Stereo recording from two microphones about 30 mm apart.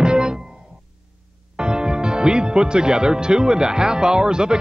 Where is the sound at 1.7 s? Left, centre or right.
Right.